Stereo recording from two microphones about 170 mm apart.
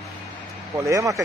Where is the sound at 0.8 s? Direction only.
20° right (ahead or behind).